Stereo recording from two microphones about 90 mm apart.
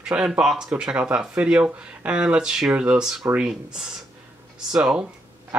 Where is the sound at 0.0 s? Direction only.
10° right (ahead or behind).